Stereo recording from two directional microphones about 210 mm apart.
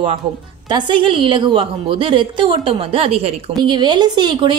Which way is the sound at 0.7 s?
20° right (ahead or behind).